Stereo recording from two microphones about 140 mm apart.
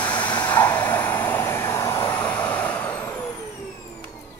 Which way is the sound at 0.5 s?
15° left (ahead or behind).